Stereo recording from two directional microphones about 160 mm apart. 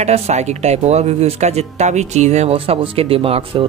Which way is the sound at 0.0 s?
45° right (ahead or behind).